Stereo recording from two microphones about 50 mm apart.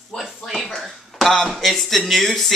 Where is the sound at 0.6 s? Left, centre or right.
Centre.